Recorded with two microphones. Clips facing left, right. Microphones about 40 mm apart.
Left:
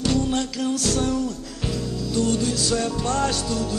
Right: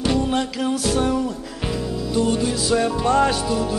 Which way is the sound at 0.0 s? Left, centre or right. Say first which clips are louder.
Right 2 dB; centre.